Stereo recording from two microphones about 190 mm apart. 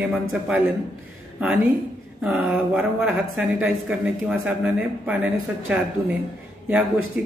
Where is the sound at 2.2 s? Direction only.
5° right (ahead or behind).